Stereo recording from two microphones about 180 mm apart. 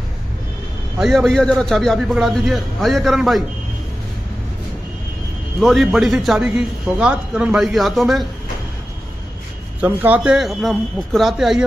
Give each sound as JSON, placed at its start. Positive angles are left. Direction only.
{"t": 0.9, "sound": "a man's voice", "side_deg": 0}
{"t": 5.6, "sound": "a man's voice", "side_deg": 0}
{"t": 9.8, "sound": "a man's voice", "side_deg": -10}